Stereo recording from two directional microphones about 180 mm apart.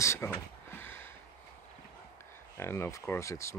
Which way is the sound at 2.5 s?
15° left (ahead or behind).